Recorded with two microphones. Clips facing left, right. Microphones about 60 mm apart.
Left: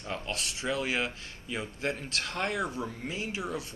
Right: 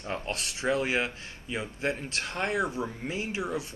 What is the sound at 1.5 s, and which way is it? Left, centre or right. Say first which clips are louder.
Speech: right 2 dB; centre.